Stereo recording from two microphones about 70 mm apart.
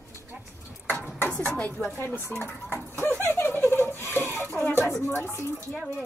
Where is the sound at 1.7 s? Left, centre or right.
Left.